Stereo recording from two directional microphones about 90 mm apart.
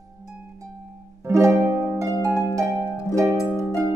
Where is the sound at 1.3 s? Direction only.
30° right (ahead or behind).